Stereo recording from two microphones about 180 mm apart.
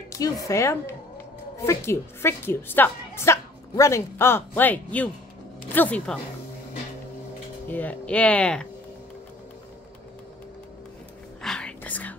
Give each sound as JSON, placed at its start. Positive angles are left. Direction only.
{"t": 0.1, "sound": "a woman's voice", "side_deg": 20}
{"t": 7.6, "sound": "a woman's voice", "side_deg": 10}
{"t": 11.4, "sound": "whispering", "side_deg": 5}